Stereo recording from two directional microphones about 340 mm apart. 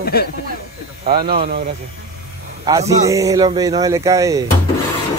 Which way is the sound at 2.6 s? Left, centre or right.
Centre.